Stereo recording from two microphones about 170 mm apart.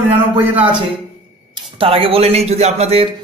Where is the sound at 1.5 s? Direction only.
30° right (ahead or behind).